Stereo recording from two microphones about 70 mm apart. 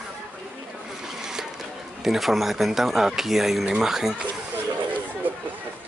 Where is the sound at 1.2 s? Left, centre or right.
Centre.